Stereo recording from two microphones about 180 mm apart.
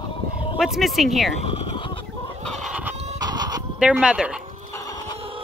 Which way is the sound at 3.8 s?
5° right (ahead or behind).